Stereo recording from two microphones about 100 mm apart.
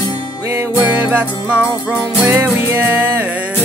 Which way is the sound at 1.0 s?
15° right (ahead or behind).